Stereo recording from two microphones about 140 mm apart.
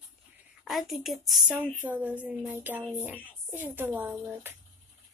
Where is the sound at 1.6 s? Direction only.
10° right (ahead or behind).